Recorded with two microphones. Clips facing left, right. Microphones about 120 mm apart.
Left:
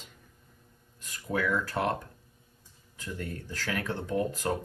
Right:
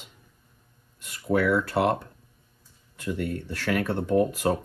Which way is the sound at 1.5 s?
70° right (ahead or behind).